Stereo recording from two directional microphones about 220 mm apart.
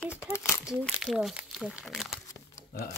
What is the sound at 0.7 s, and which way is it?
Speech, centre (ahead or behind).